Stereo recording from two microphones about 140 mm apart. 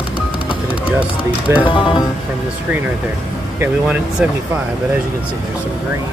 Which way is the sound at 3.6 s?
10° right (ahead or behind).